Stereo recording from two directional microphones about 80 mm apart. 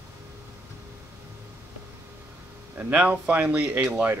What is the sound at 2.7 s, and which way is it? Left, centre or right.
Speech, centre.